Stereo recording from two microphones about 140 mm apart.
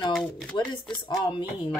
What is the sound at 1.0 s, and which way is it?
Speech, 30° left (ahead or behind).